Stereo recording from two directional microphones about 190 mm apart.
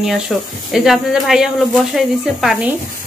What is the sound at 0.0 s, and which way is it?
Speech, centre (ahead or behind).